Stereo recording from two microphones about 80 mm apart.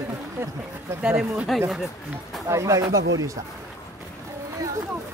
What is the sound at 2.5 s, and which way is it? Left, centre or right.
Speech, right.